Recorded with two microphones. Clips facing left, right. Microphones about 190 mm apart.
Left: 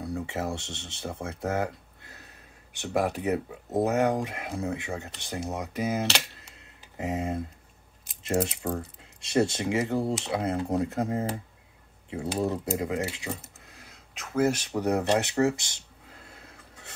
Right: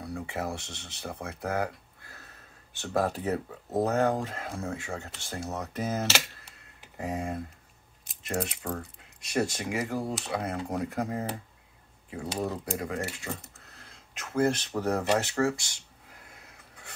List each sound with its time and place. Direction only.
0.0 s speech: 25° left (ahead or behind)
7.0 s speech: 20° left (ahead or behind)
13.4 s a sound: 5° left (ahead or behind)
14.3 s speech: 5° left (ahead or behind)